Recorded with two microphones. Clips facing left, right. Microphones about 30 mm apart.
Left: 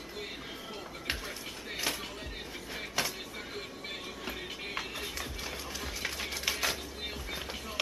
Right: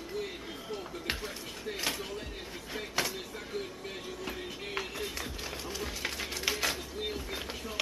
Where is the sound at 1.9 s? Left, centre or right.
Centre.